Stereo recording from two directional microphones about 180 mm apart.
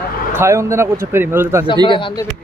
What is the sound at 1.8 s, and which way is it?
Speech, 30° left (ahead or behind).